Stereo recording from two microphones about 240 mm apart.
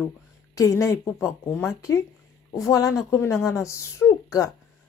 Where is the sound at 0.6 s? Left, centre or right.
Centre.